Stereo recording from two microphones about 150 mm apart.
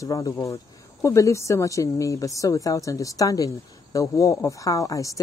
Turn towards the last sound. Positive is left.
turn(degrees=20)  # may be behind; listen again after turning